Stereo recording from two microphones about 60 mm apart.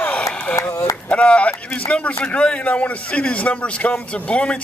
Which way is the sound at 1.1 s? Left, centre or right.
Left.